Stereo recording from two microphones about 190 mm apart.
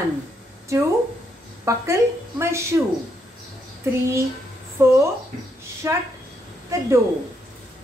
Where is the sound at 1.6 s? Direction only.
15° right (ahead or behind).